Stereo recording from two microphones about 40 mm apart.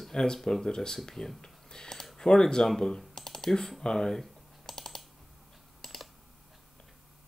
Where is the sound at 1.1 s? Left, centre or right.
Centre.